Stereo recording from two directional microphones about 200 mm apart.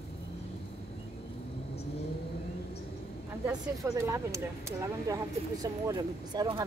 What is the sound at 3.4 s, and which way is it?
Speech, 15° right (ahead or behind).